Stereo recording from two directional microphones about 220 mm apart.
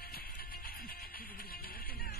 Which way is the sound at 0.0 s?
45° left (ahead or behind).